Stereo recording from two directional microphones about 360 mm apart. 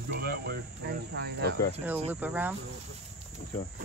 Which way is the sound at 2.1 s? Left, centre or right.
Centre.